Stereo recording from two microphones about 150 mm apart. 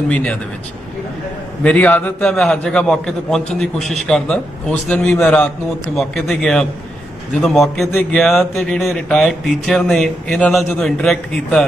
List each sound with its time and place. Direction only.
0.1 s speech: 10° left (ahead or behind)
1.6 s a man's voice: 10° left (ahead or behind)